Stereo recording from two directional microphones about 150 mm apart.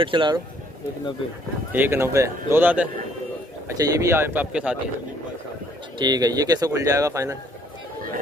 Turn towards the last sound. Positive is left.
turn(degrees=-20)  # may be behind; listen again after turning